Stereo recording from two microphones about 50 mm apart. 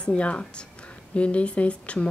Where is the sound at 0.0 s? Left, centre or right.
Left.